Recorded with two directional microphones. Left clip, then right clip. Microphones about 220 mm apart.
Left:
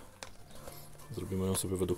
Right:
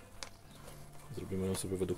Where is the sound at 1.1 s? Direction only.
30° left (ahead or behind).